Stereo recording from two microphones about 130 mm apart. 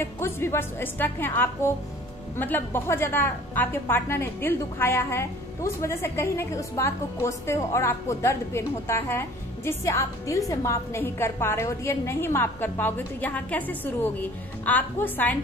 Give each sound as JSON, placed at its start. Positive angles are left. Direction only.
{"t": 0.0, "sound": "a woman's voice", "side_deg": 20}